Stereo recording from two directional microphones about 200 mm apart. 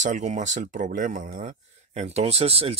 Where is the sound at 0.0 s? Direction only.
35° right (ahead or behind).